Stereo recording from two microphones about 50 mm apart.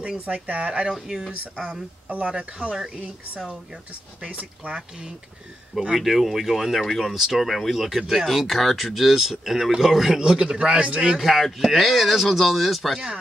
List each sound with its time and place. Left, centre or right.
0.2 s speech: right
0.9 s speech: centre
2.0 s speech: right
4.3 s speech: right
5.9 s speech: centre
11.1 s speech: centre